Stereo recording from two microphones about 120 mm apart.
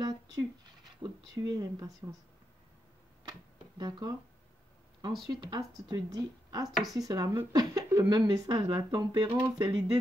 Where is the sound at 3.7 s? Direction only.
35° right (ahead or behind).